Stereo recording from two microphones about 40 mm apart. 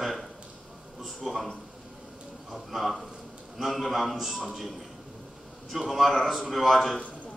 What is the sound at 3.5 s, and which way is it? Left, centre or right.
Speech, centre.